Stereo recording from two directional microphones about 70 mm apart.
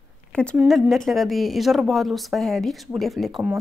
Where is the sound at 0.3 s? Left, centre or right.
Centre.